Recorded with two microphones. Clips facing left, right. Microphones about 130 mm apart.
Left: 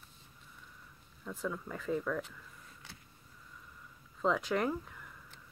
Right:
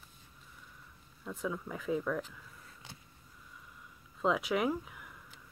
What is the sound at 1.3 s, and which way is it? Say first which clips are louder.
Speech: right 1 dB; centre (ahead or behind).